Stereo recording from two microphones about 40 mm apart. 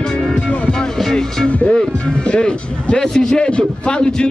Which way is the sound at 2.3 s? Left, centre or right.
Left.